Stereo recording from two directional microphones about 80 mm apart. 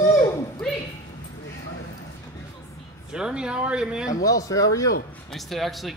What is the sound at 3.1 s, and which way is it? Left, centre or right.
Speech, centre.